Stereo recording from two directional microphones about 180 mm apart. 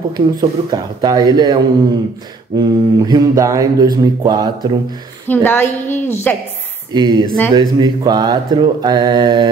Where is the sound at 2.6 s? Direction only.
25° right (ahead or behind).